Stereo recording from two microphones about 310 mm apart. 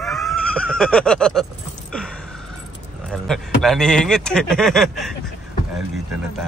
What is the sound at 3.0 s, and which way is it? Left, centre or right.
Speech, centre.